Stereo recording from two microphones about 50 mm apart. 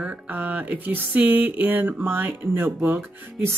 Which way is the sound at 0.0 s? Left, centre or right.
Right.